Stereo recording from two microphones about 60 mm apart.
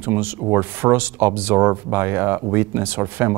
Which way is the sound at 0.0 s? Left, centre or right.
Right.